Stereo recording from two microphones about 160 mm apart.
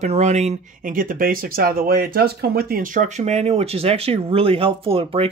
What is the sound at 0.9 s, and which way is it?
Speech, 60° right (ahead or behind).